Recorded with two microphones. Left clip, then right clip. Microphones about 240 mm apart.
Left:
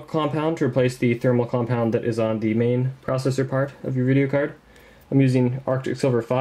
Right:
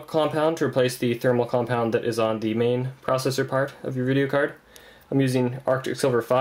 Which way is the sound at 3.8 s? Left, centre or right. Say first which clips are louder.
Left 2 dB; centre.